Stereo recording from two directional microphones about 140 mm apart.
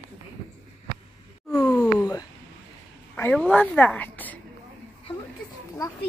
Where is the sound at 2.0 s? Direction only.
25° left (ahead or behind).